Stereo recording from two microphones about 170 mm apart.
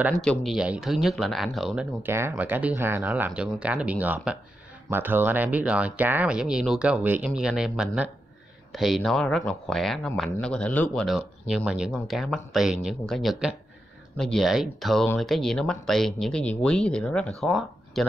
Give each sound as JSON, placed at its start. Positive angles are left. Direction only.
{"t": 0.2, "sound": "speech", "side_deg": 0}
{"t": 2.0, "sound": "speech", "side_deg": -15}
{"t": 11.1, "sound": "speech", "side_deg": -5}